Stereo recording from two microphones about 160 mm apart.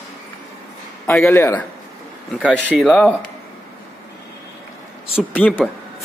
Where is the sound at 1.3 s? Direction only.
15° left (ahead or behind).